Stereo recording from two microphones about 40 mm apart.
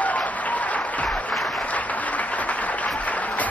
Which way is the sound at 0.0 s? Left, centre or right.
Left.